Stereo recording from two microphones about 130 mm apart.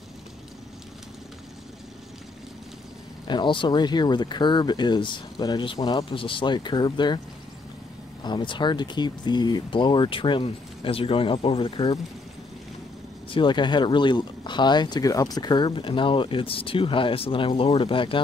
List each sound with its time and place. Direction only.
3.3 s speech: 40° left (ahead or behind)
8.2 s speech: 35° left (ahead or behind)
13.3 s speech: 40° left (ahead or behind)